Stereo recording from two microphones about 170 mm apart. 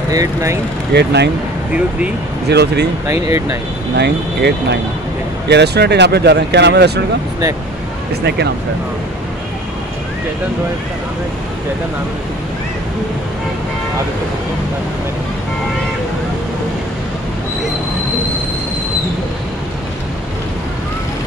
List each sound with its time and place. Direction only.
0.1 s speech: 20° right (ahead or behind)
0.9 s speech: 80° right
2.5 s speech: 75° right (ahead or behind)
3.1 s speech: 15° right (ahead or behind)
3.9 s speech: 80° right